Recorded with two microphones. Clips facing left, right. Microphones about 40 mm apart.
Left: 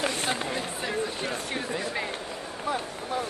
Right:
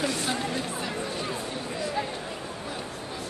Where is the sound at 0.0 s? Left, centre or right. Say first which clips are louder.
Even; left.